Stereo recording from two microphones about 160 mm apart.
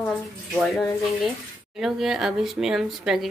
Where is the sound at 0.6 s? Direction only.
Centre (ahead or behind).